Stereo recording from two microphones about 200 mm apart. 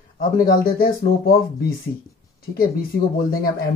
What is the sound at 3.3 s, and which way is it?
Speech, 45° left (ahead or behind).